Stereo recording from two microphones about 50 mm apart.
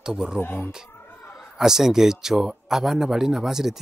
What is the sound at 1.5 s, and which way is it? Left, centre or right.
Speech, centre.